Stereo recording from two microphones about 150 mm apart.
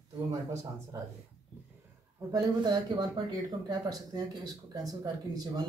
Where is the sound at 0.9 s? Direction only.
20° right (ahead or behind).